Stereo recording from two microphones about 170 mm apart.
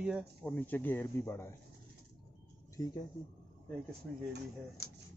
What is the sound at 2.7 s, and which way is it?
Speech, 20° left (ahead or behind).